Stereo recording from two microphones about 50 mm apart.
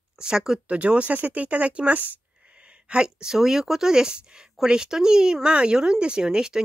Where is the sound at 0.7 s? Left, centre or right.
Right.